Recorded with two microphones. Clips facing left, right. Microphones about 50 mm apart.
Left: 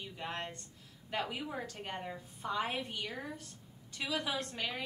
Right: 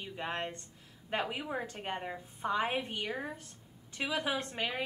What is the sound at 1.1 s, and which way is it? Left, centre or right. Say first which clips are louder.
A woman's voice: right 3 dB; centre.